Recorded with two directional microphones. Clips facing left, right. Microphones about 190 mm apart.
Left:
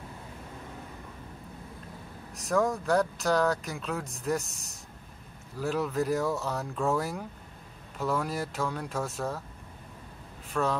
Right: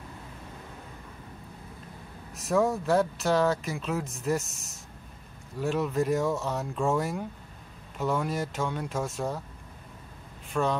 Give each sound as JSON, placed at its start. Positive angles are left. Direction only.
{"t": 2.3, "sound": "speech", "side_deg": 0}
{"t": 10.5, "sound": "speech", "side_deg": 0}